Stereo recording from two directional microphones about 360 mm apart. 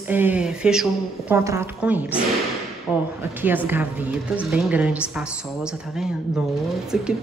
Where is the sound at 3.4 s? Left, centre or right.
Centre.